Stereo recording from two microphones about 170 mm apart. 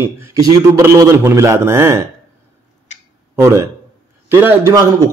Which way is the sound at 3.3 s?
15° right (ahead or behind).